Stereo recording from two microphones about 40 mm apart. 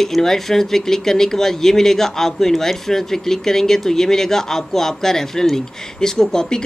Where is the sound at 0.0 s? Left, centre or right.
Centre.